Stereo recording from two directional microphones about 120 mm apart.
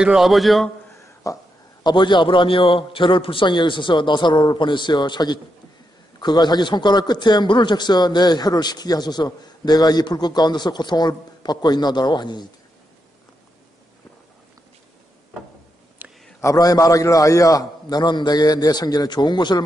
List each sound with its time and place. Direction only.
0.0 s a man's voice: 5° right (ahead or behind)
0.9 s a man's voice: 25° left (ahead or behind)
16.0 s a sound: 15° right (ahead or behind)
16.3 s a man's voice: 30° left (ahead or behind)